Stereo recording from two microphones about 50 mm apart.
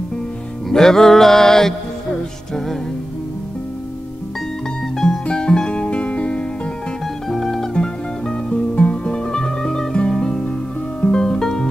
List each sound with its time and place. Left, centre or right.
0.7 s music: centre
4.9 s music: centre
7.2 s music: centre
7.7 s music: centre